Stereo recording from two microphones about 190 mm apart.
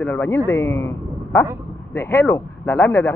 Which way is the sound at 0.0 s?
10° left (ahead or behind).